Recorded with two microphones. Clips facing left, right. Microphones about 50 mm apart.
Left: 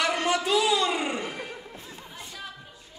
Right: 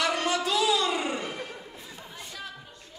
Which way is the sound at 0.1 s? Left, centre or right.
Left.